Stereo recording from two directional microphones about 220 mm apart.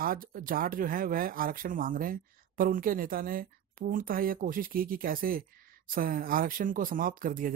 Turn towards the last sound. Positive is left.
turn(degrees=-40)  # may be behind; listen again after turning